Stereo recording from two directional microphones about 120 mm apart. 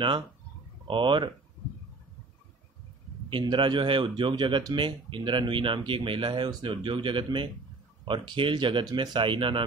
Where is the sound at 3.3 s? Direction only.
40° right (ahead or behind).